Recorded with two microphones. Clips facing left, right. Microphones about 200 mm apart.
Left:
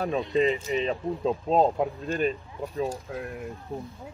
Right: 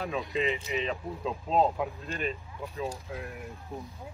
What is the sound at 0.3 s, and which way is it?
Speech, 35° left (ahead or behind).